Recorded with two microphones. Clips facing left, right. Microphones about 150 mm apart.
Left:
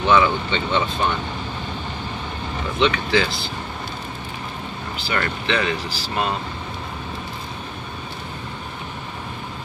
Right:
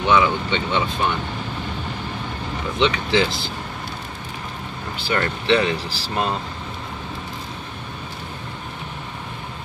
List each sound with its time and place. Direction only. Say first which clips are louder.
0.1 s speech: even; 10° right (ahead or behind)
2.8 s speech: even; 20° right (ahead or behind)
5.1 s speech: right 4 dB; 30° right (ahead or behind)